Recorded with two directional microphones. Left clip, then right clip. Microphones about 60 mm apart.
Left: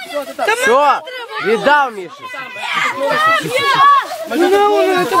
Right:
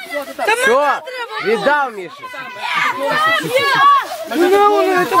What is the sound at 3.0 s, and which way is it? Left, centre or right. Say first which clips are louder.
Speech: left 4 dB; centre.